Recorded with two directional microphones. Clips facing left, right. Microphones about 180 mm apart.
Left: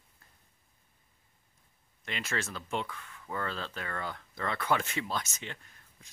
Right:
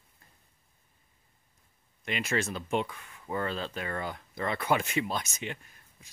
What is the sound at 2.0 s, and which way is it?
Speech, 15° right (ahead or behind).